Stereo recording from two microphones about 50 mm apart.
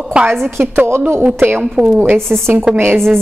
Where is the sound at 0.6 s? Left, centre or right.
Right.